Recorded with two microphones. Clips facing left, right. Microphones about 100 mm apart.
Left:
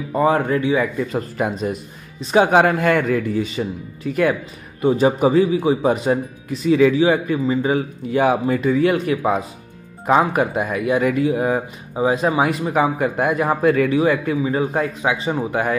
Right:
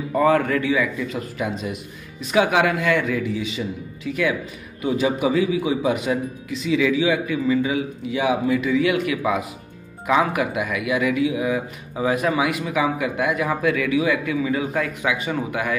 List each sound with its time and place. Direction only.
0.1 s speech: 20° left (ahead or behind)
0.7 s a man's voice: 40° left (ahead or behind)
11.9 s a man's voice: 25° left (ahead or behind)